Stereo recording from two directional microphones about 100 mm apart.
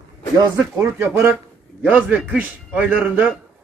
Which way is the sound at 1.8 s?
10° right (ahead or behind).